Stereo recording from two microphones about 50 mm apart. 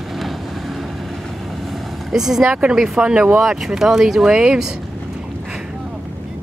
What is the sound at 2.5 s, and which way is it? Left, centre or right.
Speech, right.